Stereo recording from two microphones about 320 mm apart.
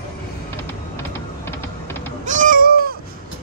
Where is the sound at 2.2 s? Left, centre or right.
Right.